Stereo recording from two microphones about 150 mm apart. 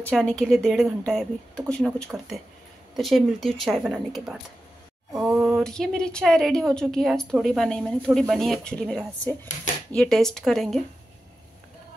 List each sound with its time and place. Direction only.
0.0 s a woman's voice: 5° left (ahead or behind)
5.1 s a sound: 15° right (ahead or behind)
5.5 s a woman's voice: 5° left (ahead or behind)